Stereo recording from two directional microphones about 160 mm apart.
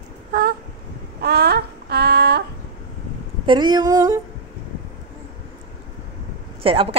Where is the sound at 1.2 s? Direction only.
80° right.